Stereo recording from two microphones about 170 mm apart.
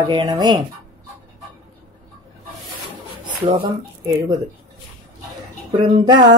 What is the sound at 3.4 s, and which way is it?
Speech, 30° right (ahead or behind).